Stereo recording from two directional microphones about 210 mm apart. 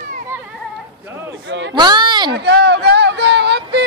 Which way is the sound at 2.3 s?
55° right (ahead or behind).